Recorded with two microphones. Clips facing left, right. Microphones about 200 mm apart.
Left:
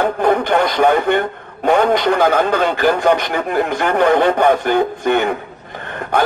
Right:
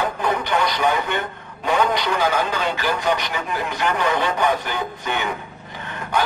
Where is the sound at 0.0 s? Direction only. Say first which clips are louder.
Left 8 dB; 55° left (ahead or behind).